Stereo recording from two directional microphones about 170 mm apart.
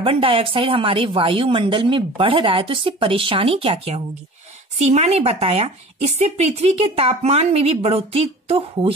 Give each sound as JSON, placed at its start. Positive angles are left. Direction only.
{"t": 0.0, "sound": "speech", "side_deg": -30}